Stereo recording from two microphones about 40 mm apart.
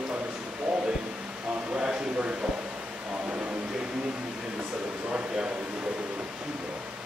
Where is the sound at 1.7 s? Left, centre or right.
Right.